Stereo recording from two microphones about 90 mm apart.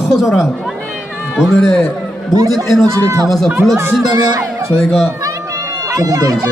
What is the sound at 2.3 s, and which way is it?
A man's voice, 45° right (ahead or behind).